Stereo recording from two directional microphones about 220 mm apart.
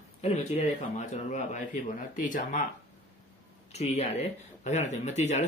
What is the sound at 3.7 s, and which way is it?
Speech, 30° left (ahead or behind).